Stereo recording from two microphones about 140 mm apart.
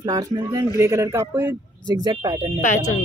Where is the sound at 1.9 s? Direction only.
30° right (ahead or behind).